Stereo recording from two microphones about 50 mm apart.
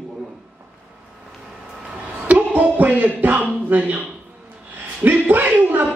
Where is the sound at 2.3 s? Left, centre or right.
Right.